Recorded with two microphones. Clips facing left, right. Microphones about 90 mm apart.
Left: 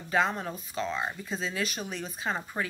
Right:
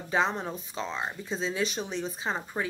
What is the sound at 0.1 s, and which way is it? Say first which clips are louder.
Speech: even; 25° right (ahead or behind).